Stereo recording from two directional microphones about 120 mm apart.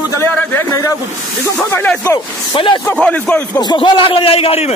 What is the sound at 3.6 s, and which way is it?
A man's voice, 40° left (ahead or behind).